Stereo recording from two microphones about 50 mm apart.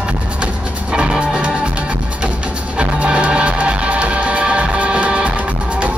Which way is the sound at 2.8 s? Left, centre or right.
Right.